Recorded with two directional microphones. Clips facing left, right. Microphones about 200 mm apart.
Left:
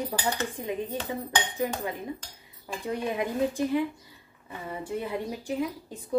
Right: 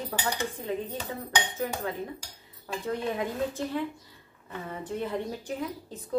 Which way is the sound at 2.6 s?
15° left (ahead or behind).